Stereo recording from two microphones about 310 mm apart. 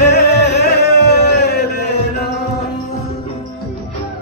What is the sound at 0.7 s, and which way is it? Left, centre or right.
Music, left.